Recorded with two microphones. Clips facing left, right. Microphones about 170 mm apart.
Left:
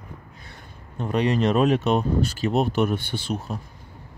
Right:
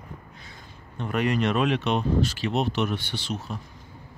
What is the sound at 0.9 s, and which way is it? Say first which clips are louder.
Speech: left 3 dB; 30° left (ahead or behind).